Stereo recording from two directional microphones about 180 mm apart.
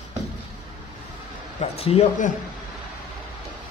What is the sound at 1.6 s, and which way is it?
Speech, 35° left (ahead or behind).